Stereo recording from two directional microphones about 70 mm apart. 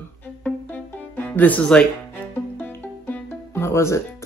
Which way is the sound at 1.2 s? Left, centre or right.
Left.